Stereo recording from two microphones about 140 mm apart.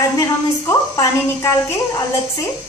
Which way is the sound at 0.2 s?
20° left (ahead or behind).